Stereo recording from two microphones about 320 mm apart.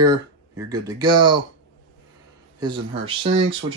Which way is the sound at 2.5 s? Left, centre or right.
Centre.